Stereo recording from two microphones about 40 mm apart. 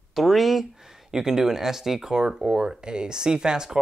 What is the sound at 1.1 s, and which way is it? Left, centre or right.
Speech, centre.